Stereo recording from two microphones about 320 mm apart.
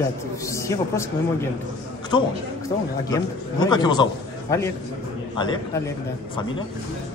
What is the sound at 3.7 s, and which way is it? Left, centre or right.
Speech, centre.